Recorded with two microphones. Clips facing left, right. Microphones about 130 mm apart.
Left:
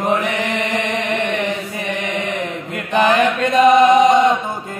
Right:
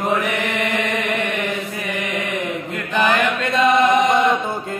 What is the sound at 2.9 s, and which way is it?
Mantra, 30° left (ahead or behind).